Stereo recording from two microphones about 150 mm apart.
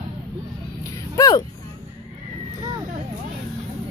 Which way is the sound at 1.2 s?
25° left (ahead or behind).